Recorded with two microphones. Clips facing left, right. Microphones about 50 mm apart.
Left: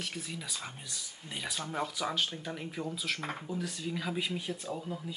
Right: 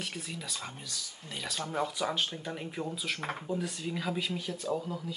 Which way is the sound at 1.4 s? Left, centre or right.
Centre.